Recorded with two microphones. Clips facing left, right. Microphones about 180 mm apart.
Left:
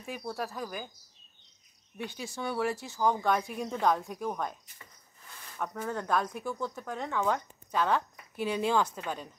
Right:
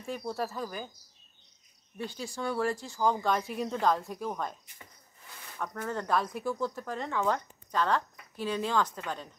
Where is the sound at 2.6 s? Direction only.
5° left (ahead or behind).